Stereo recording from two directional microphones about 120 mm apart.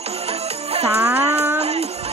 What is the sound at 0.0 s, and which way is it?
Music, 60° right (ahead or behind).